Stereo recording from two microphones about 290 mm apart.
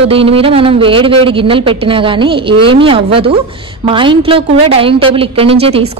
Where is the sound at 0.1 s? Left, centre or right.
Centre.